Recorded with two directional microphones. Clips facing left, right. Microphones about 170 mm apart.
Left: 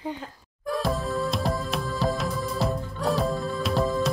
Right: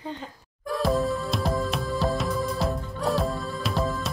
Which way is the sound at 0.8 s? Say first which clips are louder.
Right 3 dB; centre (ahead or behind).